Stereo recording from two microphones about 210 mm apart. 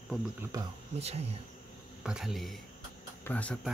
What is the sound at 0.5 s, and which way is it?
Speech, 20° right (ahead or behind).